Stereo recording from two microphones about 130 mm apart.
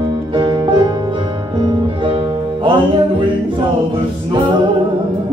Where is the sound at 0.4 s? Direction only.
35° right (ahead or behind).